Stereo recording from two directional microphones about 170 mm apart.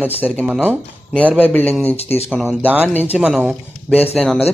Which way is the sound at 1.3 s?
10° left (ahead or behind).